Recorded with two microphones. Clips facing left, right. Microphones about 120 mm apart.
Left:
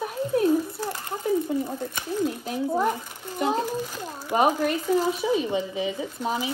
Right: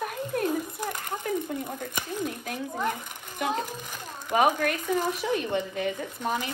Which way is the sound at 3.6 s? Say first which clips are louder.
Left 7 dB; 10° left (ahead or behind).